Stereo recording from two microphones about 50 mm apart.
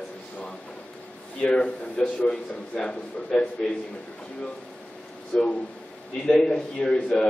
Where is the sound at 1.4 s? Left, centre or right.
Centre.